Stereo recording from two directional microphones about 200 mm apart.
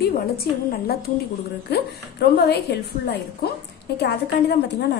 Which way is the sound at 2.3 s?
55° left (ahead or behind).